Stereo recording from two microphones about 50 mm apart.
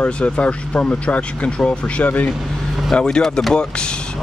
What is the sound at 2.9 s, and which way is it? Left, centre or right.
Speech, centre.